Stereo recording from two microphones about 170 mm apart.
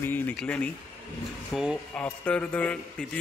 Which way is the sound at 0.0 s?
10° left (ahead or behind).